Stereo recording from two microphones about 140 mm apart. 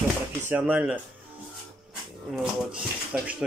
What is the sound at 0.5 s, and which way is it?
Speech, 10° right (ahead or behind).